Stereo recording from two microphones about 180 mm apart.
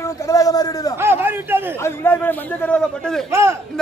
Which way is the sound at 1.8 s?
10° left (ahead or behind).